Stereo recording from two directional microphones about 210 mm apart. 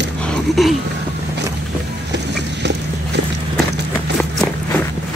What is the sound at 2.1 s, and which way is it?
Vehicle, 55° right (ahead or behind).